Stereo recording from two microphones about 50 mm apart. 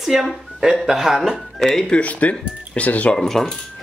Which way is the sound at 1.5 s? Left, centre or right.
Centre.